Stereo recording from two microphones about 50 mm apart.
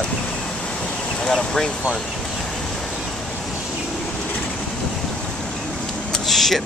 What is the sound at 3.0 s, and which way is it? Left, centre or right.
Vehicle, centre.